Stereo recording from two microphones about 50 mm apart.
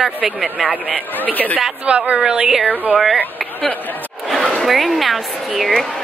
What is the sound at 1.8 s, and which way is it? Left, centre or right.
Speech, right.